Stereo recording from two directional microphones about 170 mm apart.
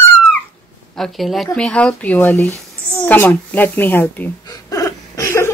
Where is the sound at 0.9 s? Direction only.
Centre (ahead or behind).